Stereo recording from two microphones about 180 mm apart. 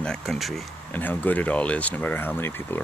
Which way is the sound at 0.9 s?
10° left (ahead or behind).